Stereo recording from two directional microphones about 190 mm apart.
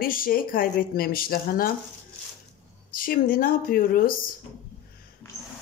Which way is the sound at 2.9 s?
50° left (ahead or behind).